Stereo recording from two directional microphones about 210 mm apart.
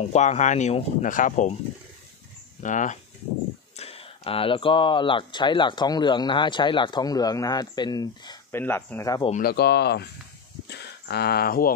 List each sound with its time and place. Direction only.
0.0 s speech: 35° left (ahead or behind)
2.6 s speech: 35° left (ahead or behind); by 9.2 s 15° left (ahead or behind)
9.4 s speech: 50° left (ahead or behind)